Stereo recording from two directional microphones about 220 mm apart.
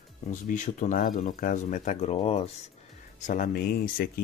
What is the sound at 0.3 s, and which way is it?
Speech, 35° left (ahead or behind).